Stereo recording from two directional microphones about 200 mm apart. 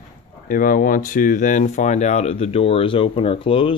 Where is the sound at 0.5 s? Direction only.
45° left (ahead or behind); by 3.8 s 25° left (ahead or behind).